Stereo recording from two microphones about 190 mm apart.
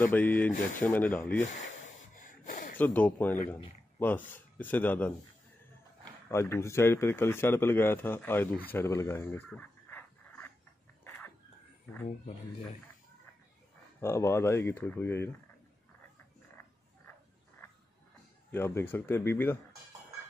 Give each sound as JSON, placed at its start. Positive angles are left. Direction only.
{"t": 0.0, "sound": "speech", "side_deg": 10}
{"t": 2.1, "sound": "a sound", "side_deg": 45}
{"t": 2.8, "sound": "speech", "side_deg": 10}
{"t": 6.3, "sound": "speech", "side_deg": 15}
{"t": 8.6, "sound": "a sound", "side_deg": 15}
{"t": 14.0, "sound": "speech", "side_deg": 15}
{"t": 18.5, "sound": "speech", "side_deg": 10}